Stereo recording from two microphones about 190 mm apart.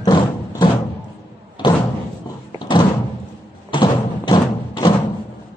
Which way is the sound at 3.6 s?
25° left (ahead or behind).